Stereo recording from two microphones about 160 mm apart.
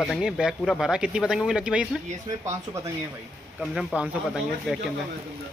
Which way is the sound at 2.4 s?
20° right (ahead or behind).